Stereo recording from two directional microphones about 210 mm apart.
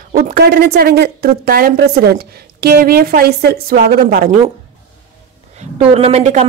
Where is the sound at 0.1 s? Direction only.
45° right (ahead or behind).